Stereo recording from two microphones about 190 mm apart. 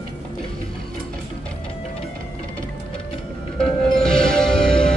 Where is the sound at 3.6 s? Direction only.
5° left (ahead or behind).